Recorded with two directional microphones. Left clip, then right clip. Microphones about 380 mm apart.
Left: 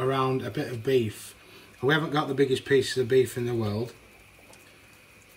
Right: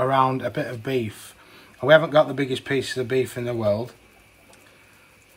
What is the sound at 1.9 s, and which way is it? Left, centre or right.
Speech, right.